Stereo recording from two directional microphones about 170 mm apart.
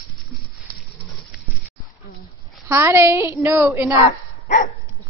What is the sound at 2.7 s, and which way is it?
A woman's voice, 15° right (ahead or behind).